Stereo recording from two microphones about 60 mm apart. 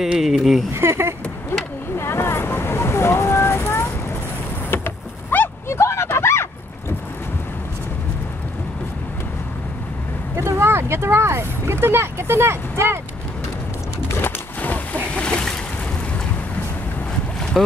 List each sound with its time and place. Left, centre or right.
0.0 s speech: centre
0.7 s speech: right
2.0 s vehicle: left
4.6 s vehicle: left
5.7 s a sound: left
10.3 s speech: right
14.2 s a sound: left
15.0 s a sound: centre
17.6 s speech: centre